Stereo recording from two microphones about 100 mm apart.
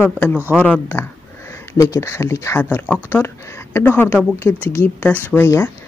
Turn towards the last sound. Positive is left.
turn(degrees=25)  # may be behind; listen again after turning